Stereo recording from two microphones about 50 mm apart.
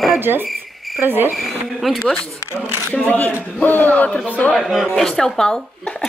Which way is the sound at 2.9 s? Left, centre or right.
Left.